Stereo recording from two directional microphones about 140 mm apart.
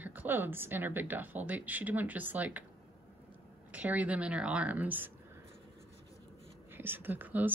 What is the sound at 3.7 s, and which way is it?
Speech, 10° right (ahead or behind).